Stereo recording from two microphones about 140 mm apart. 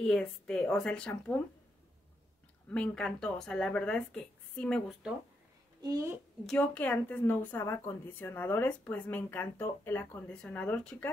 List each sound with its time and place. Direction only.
0.0 s speech: 5° left (ahead or behind)
2.7 s speech: 10° left (ahead or behind)
5.8 s a woman's voice: 25° right (ahead or behind)
6.4 s speech: 10° left (ahead or behind)